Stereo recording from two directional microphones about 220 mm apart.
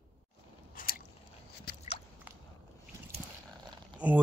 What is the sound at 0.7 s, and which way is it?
Biting, 40° left (ahead or behind).